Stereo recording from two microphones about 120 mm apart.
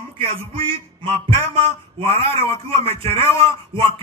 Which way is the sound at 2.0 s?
20° left (ahead or behind).